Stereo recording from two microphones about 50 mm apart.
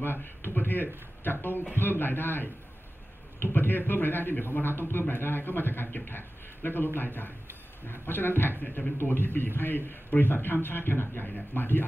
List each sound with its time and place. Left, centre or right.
0.0 s a man's voice: left
11.2 s a man's voice: left